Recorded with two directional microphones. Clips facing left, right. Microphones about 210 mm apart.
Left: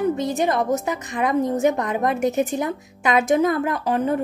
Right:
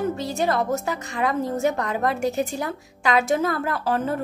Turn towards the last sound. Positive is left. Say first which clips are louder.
# left 3 dB
turn(degrees=15)  # may be behind; listen again after turning